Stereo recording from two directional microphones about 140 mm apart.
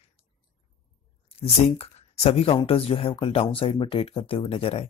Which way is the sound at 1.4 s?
45° left (ahead or behind).